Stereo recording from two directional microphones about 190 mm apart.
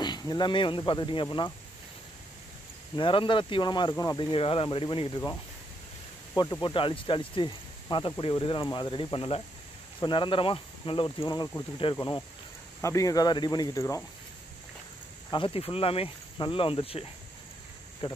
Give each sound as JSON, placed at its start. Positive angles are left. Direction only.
{"t": 0.0, "sound": "speech", "side_deg": 20}
{"t": 3.0, "sound": "speech", "side_deg": 25}
{"t": 6.3, "sound": "speech", "side_deg": 20}
{"t": 15.3, "sound": "speech", "side_deg": 30}